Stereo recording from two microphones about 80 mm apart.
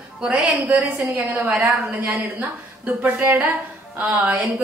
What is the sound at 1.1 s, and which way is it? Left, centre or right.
A woman's voice, right.